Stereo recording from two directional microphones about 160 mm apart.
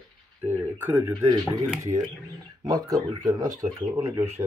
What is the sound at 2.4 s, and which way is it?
Speech, 20° right (ahead or behind).